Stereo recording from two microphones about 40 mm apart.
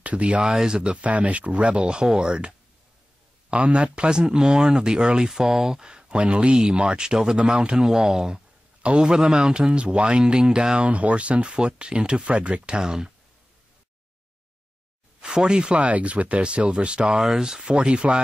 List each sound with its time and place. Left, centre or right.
0.0 s speech: right
1.0 s speech: right
5.3 s speech: centre; by 7.8 s right
7.8 s speech: centre; by 10.3 s right
10.3 s speech: centre
10.9 s speech: right; by 13.1 s centre
15.1 s speech: centre
15.8 s speech: right
17.1 s speech: centre
17.4 s speech: centre